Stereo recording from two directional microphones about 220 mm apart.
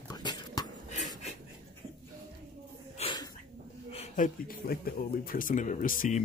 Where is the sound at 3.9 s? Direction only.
35° left (ahead or behind).